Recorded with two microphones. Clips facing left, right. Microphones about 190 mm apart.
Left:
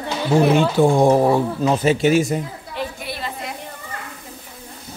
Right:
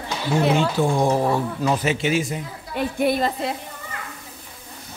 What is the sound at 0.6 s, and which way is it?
Speech, 55° left (ahead or behind).